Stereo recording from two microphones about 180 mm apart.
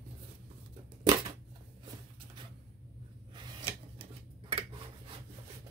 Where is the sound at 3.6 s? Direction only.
30° right (ahead or behind).